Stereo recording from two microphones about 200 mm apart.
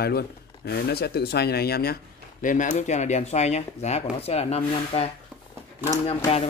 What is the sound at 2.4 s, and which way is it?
Speech, 40° left (ahead or behind).